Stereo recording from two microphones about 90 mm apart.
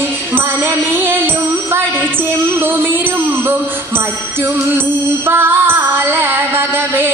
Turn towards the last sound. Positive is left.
turn(degrees=-25)  # may be behind; listen again after turning